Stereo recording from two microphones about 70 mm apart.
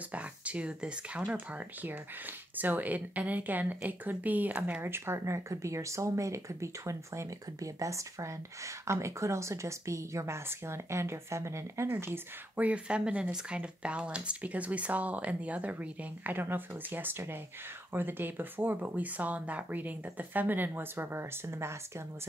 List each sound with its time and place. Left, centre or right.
0.1 s speech: centre
1.3 s speech: right
4.8 s speech: right
12.5 s speech: centre; by 22.0 s right